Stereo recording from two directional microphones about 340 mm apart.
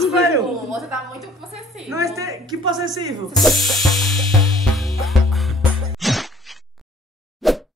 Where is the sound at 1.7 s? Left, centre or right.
Centre.